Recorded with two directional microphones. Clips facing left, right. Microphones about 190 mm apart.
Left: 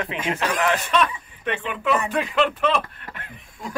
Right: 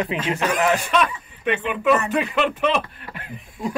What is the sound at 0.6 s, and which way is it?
Speech, 10° right (ahead or behind).